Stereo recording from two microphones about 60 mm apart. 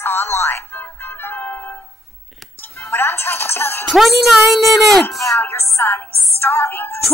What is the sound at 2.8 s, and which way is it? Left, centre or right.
Speech, left.